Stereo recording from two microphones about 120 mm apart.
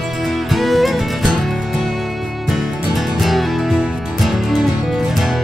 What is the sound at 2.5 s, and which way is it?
Music, centre (ahead or behind).